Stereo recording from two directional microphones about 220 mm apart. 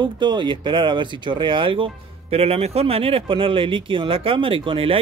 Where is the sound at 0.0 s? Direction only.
20° right (ahead or behind).